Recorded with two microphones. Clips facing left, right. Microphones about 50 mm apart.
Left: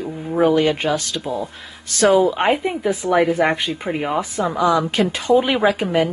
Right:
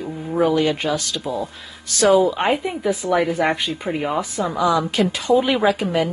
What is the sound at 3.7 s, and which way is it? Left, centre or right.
Speech, centre.